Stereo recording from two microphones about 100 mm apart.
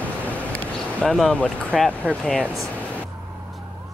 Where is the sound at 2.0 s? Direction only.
15° right (ahead or behind).